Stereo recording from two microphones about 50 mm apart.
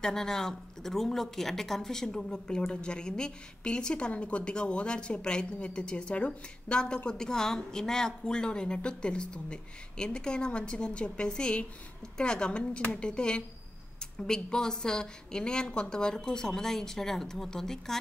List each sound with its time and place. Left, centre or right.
0.0 s a woman's voice: centre